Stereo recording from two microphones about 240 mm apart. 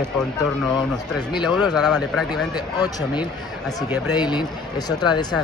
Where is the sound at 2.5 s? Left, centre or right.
Centre.